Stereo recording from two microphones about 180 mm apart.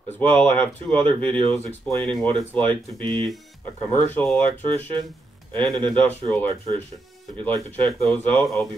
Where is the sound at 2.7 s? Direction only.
30° right (ahead or behind).